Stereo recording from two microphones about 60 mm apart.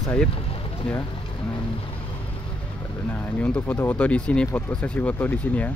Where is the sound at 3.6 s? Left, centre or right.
Left.